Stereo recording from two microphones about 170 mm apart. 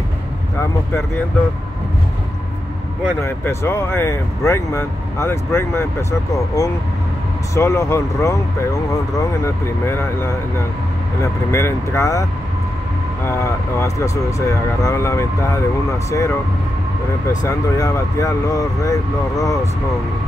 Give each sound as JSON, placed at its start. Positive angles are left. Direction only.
{"t": 3.2, "sound": "speech", "side_deg": 15}
{"t": 17.4, "sound": "speech", "side_deg": 20}